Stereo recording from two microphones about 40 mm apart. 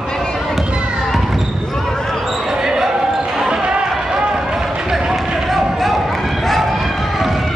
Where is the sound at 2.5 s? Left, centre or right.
Centre.